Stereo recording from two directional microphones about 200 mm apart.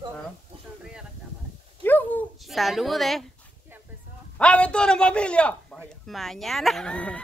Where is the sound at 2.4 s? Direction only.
Centre (ahead or behind).